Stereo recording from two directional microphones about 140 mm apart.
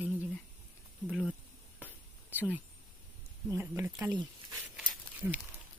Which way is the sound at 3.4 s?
15° right (ahead or behind).